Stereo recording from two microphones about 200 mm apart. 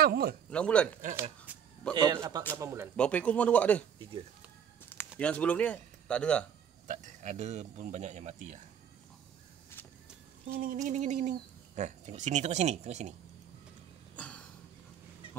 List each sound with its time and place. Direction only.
0.0 s speech: 50° right (ahead or behind)
0.5 s speech: 5° left (ahead or behind)
1.5 s speech: 5° right (ahead or behind)
2.0 s a man's voice: 20° right (ahead or behind)
3.0 s speech: 5° left (ahead or behind)
5.2 s speech: 5° left (ahead or behind)
6.9 s speech: 35° right (ahead or behind)
10.5 s speech: 45° right (ahead or behind)
14.1 s a sound: 5° left (ahead or behind)